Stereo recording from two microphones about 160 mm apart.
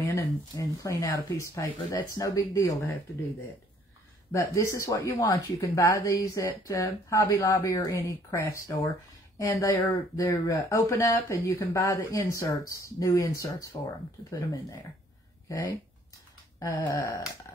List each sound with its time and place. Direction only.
0.0 s speech: 20° left (ahead or behind)
4.3 s speech: 20° left (ahead or behind)
16.5 s speech: 20° left (ahead or behind)